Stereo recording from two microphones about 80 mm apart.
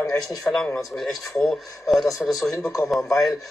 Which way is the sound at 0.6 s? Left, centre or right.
Centre.